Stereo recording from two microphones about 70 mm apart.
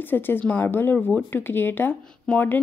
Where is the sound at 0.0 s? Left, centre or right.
Left.